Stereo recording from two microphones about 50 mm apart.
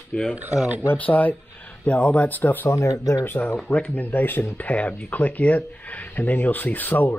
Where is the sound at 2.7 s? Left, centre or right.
Left.